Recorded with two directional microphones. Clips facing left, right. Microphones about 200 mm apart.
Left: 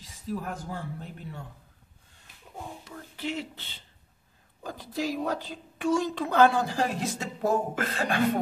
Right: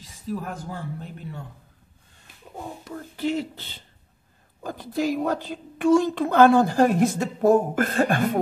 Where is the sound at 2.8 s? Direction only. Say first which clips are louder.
Right 10 dB; 45° right (ahead or behind).